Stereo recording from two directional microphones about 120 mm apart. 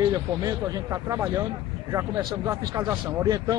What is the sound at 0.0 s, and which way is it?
Speech, 30° right (ahead or behind).